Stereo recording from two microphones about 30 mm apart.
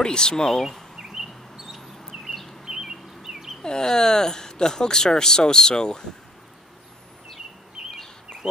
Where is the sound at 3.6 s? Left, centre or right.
Left.